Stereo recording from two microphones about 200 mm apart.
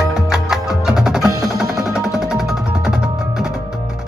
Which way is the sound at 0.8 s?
Centre (ahead or behind).